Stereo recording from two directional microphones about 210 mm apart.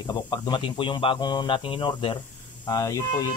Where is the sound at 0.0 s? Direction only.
20° left (ahead or behind).